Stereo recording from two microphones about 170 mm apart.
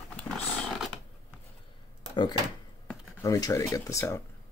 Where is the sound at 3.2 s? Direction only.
20° left (ahead or behind).